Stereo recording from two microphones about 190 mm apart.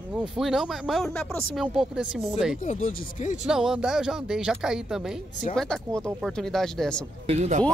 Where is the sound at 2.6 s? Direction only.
40° left (ahead or behind).